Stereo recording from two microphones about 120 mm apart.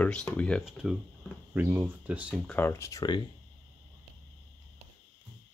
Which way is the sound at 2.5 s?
20° left (ahead or behind).